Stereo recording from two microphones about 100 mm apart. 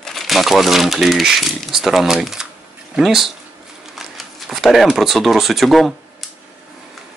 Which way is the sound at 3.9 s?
Centre (ahead or behind).